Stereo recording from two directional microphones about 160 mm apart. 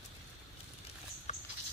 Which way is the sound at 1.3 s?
45° left (ahead or behind).